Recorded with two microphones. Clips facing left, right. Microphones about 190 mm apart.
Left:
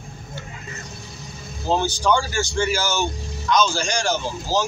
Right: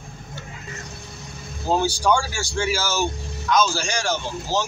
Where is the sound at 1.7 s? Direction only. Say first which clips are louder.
Even; 10° right (ahead or behind).